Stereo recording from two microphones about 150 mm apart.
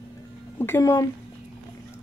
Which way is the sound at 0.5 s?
15° left (ahead or behind).